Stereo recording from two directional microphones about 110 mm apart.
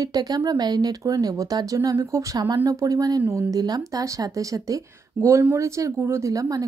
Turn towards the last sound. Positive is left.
turn(degrees=-30)  # may be behind; listen again after turning